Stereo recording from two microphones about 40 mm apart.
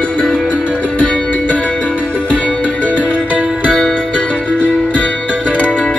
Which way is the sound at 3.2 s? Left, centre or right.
Right.